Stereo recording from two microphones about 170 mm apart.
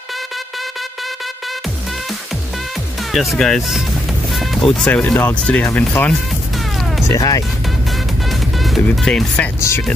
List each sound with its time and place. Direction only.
3.0 s speech: centre (ahead or behind)
7.1 s speech: 20° left (ahead or behind)
8.3 s music: centre (ahead or behind)
9.6 s speech: 15° left (ahead or behind)